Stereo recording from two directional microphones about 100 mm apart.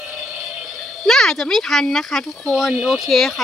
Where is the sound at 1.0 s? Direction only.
5° left (ahead or behind).